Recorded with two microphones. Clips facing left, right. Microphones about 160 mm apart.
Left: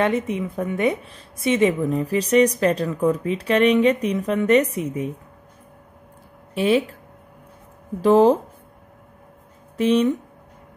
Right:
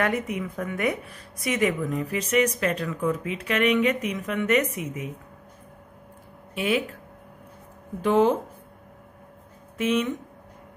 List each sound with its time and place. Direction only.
0.0 s a woman's voice: 25° left (ahead or behind)
6.5 s speech: 30° left (ahead or behind)
8.0 s a woman's voice: 35° left (ahead or behind)
9.8 s a woman's voice: 35° left (ahead or behind)